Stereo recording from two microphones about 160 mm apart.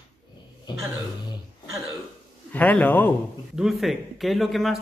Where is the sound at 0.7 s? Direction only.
30° left (ahead or behind).